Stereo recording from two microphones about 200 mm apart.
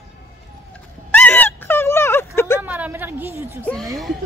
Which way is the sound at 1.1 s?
10° left (ahead or behind).